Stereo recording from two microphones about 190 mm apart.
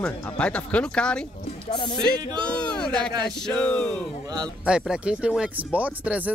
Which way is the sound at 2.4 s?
5° left (ahead or behind).